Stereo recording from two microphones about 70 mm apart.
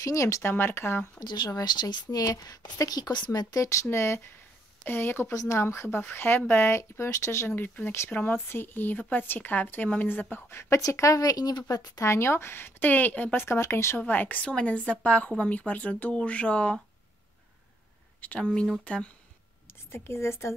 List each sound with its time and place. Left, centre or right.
0.0 s speech: left
1.2 s speech: left
3.6 s speech: left
5.3 s speech: left
10.6 s a woman's voice: left
12.0 s speech: left
13.4 s speech: left
14.0 s speech: left
18.2 s speech: centre
19.7 s a woman's voice: left